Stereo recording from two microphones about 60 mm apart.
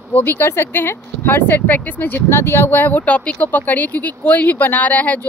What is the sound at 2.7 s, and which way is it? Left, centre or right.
Speech, left.